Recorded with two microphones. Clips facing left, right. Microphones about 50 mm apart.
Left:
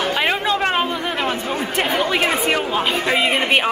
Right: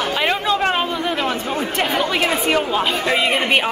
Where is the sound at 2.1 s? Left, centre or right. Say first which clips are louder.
Even; centre.